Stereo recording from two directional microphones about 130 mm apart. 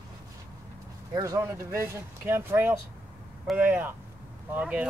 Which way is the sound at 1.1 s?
25° right (ahead or behind).